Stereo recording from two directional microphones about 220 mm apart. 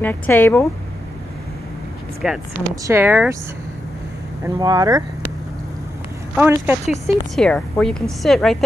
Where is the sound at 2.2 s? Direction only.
Centre (ahead or behind).